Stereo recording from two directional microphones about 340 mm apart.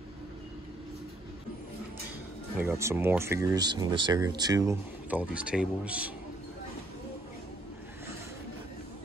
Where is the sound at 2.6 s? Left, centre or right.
Centre.